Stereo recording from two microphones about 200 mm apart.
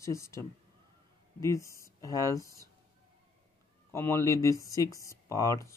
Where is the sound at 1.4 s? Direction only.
15° left (ahead or behind).